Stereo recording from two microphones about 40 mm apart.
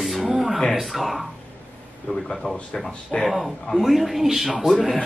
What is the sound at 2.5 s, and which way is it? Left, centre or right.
Speech, centre.